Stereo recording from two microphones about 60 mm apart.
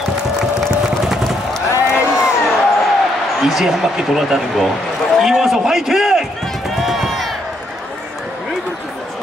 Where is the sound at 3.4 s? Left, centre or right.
Centre.